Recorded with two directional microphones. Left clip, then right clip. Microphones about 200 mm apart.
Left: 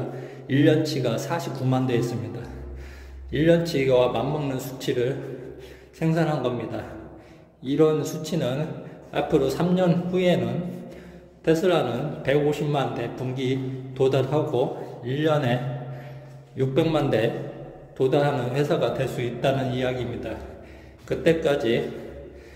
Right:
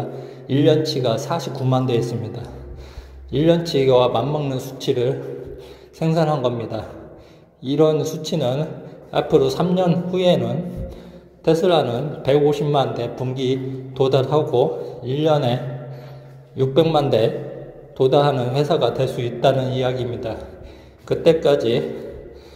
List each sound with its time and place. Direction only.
0.5 s a man's voice: 15° right (ahead or behind)